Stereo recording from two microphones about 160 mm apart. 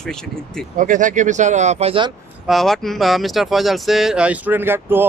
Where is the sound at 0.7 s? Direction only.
55° right (ahead or behind); by 2.1 s 35° right (ahead or behind).